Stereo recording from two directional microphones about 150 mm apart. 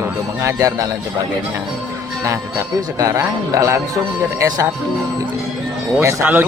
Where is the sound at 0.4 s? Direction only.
20° right (ahead or behind).